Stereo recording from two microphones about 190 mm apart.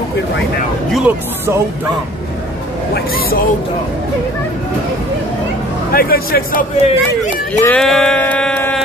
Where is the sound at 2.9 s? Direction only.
50° left (ahead or behind).